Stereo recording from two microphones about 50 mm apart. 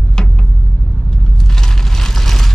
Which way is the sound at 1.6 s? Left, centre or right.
Centre.